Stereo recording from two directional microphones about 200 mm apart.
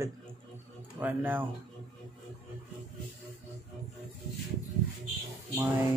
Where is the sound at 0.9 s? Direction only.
10° right (ahead or behind).